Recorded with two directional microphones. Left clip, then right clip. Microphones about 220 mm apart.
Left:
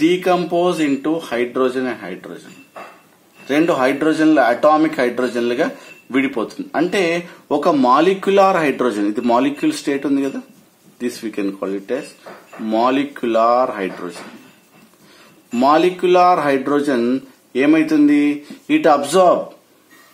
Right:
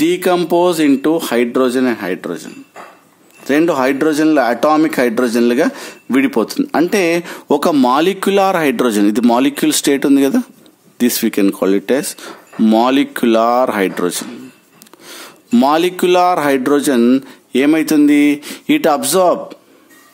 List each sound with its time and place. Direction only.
0.0 s a man's voice: 50° right (ahead or behind)
3.4 s a man's voice: 50° right (ahead or behind)
15.5 s a man's voice: 50° right (ahead or behind)